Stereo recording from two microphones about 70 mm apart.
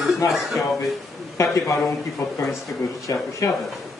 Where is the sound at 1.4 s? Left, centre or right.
Left.